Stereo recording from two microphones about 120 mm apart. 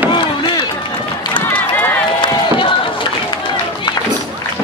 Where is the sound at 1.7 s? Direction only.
15° left (ahead or behind).